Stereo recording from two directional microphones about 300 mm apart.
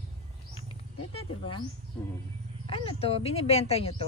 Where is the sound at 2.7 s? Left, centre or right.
Centre.